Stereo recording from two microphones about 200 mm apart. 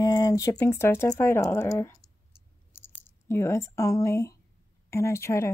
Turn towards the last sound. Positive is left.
turn(degrees=15)  # may be behind; listen again after turning